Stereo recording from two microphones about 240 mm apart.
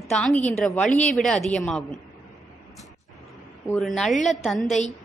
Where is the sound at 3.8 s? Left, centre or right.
Centre.